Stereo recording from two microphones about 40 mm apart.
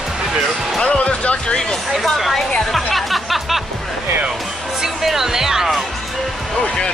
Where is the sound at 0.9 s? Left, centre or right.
Left.